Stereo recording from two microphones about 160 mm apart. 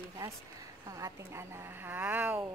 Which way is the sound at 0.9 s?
20° right (ahead or behind).